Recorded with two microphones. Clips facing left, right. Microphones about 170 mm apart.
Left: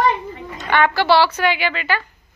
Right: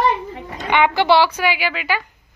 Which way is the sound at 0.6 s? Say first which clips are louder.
Right 1 dB; 15° right (ahead or behind).